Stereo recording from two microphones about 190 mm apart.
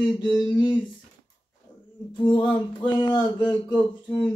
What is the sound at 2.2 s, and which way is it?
Speech, 25° left (ahead or behind).